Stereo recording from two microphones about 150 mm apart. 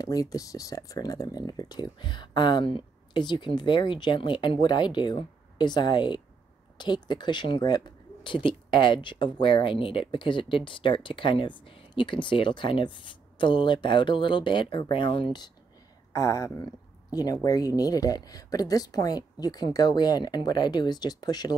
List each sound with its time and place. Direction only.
0.0 s speech: 25° left (ahead or behind)
16.1 s speech: 20° left (ahead or behind)